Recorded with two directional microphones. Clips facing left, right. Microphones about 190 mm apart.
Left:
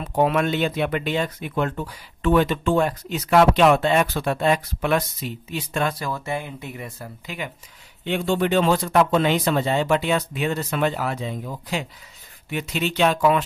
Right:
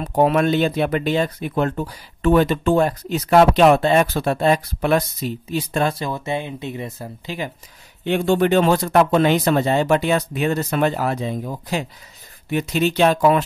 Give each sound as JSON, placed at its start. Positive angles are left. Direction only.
{"t": 0.0, "sound": "speech", "side_deg": -40}
{"t": 8.1, "sound": "speech", "side_deg": -50}